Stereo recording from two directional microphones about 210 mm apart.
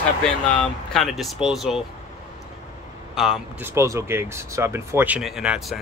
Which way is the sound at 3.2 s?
5° right (ahead or behind).